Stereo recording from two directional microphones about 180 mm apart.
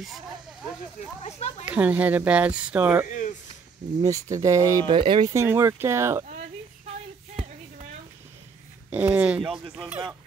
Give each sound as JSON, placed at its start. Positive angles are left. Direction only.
{"t": 1.2, "sound": "speech", "side_deg": 35}
{"t": 1.7, "sound": "speech", "side_deg": -10}
{"t": 3.1, "sound": "a sound", "side_deg": 45}
{"t": 4.0, "sound": "speech", "side_deg": -15}
{"t": 5.3, "sound": "speech", "side_deg": -15}
{"t": 8.9, "sound": "speech", "side_deg": -10}